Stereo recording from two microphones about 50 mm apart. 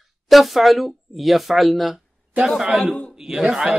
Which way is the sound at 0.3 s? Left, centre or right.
Centre.